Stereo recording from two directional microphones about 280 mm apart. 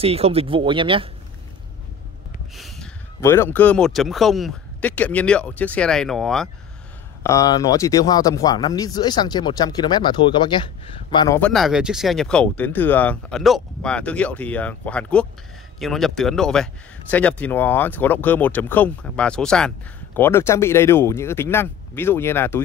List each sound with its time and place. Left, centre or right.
0.0 s speech: right
2.5 s snort: centre
3.2 s speech: centre
7.2 s speech: centre